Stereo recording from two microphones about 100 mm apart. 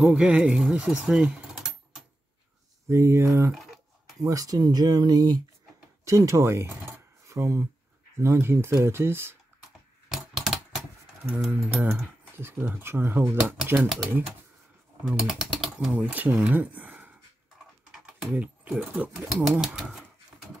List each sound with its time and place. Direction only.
0.0 s speech: 10° right (ahead or behind)
2.9 s speech: 25° right (ahead or behind)
3.5 s cutlery: centre (ahead or behind)
4.2 s speech: 35° right (ahead or behind)
6.0 s speech: 30° right (ahead or behind)
10.0 s typewriter: 5° right (ahead or behind)
11.2 s speech: 10° right (ahead or behind)
15.0 s speech: 5° right (ahead or behind)
15.9 s speech: 15° right (ahead or behind)
16.4 s a sound: 15° right (ahead or behind)
18.3 s speech: 15° right (ahead or behind)